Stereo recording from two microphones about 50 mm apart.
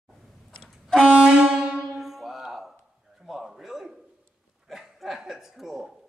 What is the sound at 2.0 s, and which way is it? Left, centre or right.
Music, centre.